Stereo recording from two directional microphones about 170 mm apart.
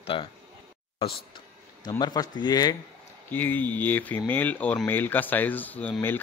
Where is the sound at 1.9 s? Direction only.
25° left (ahead or behind).